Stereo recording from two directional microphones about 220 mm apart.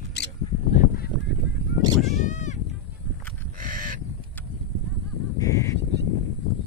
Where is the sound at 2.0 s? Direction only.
Centre (ahead or behind).